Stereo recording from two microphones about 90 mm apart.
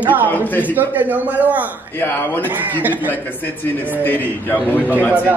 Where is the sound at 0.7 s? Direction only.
20° right (ahead or behind).